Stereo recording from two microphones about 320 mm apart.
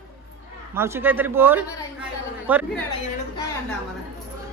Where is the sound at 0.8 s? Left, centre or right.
Centre.